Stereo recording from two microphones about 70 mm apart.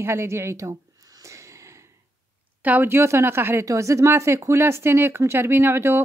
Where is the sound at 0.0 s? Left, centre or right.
Right.